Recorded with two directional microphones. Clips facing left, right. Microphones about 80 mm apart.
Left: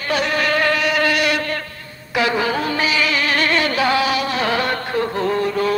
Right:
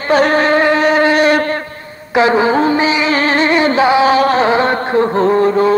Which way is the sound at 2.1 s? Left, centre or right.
Right.